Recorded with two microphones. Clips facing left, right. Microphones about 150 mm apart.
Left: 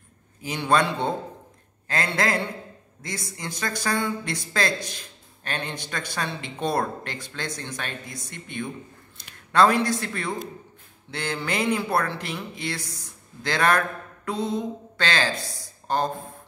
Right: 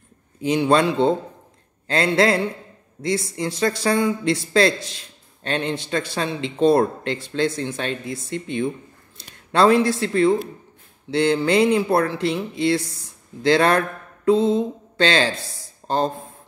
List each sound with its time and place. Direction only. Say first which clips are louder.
0.4 s speech: right 5 dB; 25° right (ahead or behind)
13.5 s mantra: right 6 dB; 30° right (ahead or behind)